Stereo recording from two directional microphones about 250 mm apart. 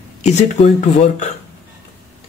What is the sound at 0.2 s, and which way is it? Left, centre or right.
Speech, left.